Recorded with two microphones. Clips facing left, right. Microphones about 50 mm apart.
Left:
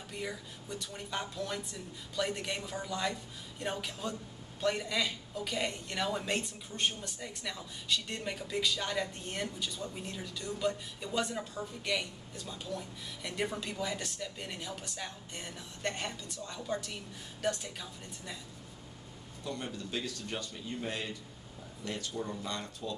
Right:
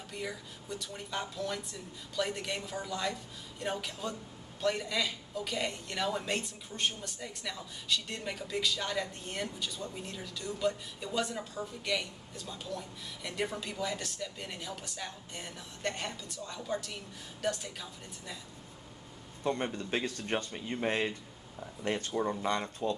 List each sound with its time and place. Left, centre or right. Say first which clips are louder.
0.1 s speech: even; centre
19.4 s speech: right 6 dB; right